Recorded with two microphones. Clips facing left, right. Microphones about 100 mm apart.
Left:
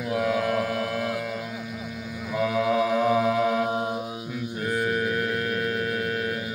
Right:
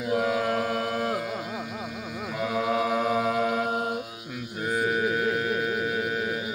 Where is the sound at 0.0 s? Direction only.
15° right (ahead or behind).